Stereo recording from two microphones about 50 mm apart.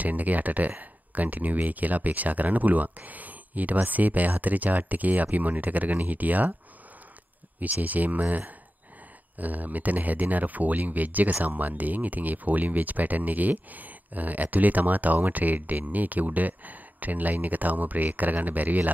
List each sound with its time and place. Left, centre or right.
0.0 s speech: right
7.6 s speech: right